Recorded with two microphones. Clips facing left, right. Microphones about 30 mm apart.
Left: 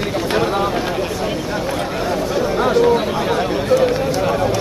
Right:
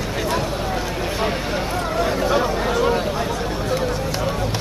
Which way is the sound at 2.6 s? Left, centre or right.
Left.